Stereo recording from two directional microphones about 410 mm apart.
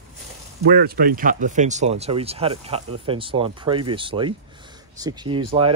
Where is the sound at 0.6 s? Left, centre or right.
Right.